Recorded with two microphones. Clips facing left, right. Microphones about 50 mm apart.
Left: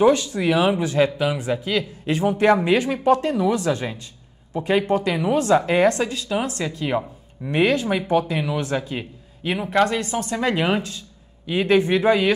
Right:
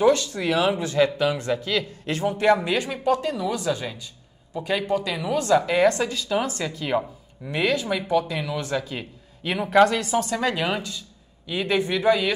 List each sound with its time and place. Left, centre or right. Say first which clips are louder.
0.0 s speech: left 3 dB; centre
5.9 s speech: left 1 dB; centre
7.5 s speech: left 4 dB; left; by 10.5 s centre
10.5 s speech: left 4 dB; left